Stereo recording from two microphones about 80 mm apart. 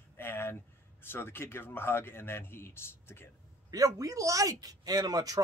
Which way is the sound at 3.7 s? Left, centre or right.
Right.